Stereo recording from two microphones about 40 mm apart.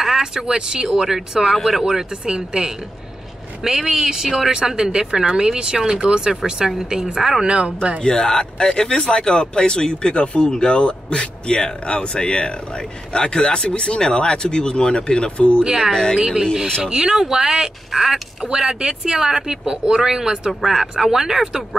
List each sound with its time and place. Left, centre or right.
0.0 s speech: centre
2.2 s speech: right
8.0 s speech: centre
15.6 s speech: centre
15.9 s speech: centre
16.2 s speech: centre